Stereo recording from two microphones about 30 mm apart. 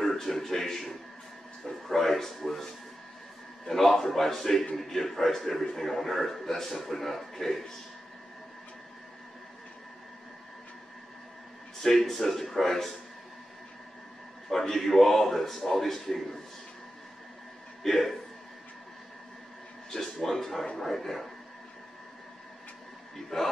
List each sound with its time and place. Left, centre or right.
0.0 s a man's voice: centre
3.7 s a man's voice: centre
11.8 s a man's voice: centre
14.5 s a man's voice: centre
17.8 s a man's voice: centre
19.9 s a man's voice: centre
23.1 s speech: centre